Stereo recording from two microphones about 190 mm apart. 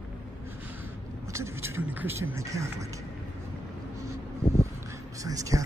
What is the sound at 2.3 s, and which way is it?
Speech, 15° right (ahead or behind).